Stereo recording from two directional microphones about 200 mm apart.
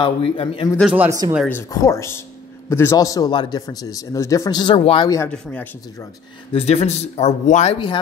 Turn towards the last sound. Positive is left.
turn(degrees=30)  # may be behind; listen again after turning